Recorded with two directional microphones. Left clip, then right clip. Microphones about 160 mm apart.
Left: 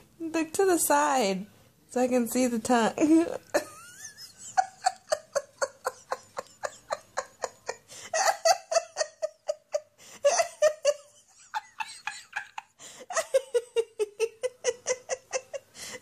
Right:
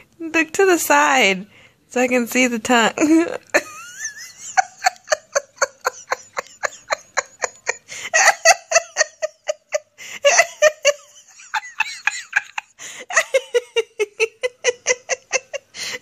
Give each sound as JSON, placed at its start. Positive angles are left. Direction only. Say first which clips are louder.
{"t": 0.2, "sound": "speech", "louder": "right 10 dB", "side_deg": -15}
{"t": 1.9, "sound": "throat clearing", "louder": "right 8 dB", "side_deg": -15}
{"t": 7.2, "sound": "giggle", "louder": "right 11 dB", "side_deg": -20}